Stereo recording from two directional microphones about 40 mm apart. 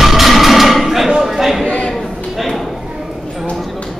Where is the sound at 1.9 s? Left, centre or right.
Centre.